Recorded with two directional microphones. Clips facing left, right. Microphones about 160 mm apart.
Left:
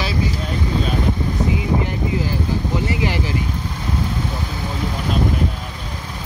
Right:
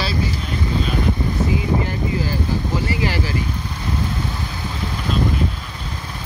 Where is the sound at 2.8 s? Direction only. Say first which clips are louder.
Left 1 dB; 20° left (ahead or behind).